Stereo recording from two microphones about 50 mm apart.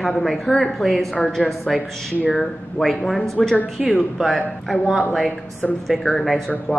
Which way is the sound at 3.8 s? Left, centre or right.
Centre.